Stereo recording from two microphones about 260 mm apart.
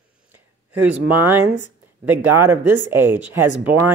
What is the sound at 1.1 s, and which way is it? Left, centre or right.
Speech, centre.